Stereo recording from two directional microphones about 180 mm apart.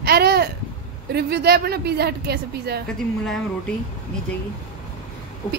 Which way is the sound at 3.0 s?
Centre (ahead or behind).